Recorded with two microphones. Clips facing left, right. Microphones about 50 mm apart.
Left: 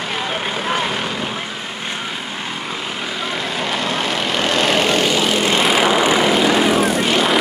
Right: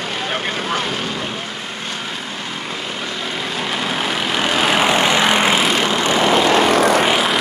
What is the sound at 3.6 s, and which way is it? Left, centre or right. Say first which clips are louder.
Vehicle: even; centre.